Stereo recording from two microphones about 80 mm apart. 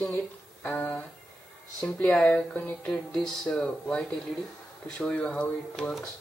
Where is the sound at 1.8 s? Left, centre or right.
Centre.